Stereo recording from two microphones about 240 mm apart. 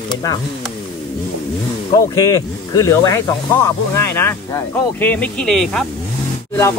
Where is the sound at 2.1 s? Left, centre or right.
Centre.